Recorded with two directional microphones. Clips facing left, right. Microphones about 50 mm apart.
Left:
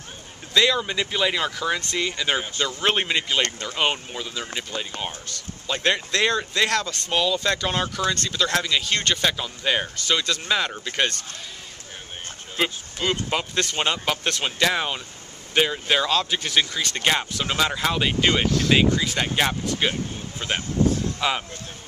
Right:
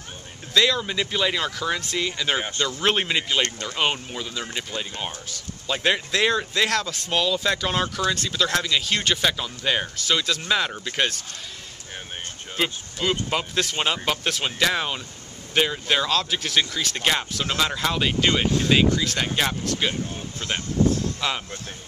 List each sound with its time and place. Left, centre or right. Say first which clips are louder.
0.6 s speech: left 1 dB; centre
12.5 s speech: left 1 dB; centre